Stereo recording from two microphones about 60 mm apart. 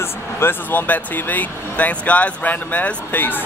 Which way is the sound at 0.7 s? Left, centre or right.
Left.